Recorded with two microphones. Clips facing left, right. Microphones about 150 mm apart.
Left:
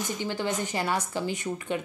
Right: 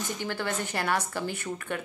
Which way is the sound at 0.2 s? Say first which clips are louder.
Left 2 dB; 15° left (ahead or behind).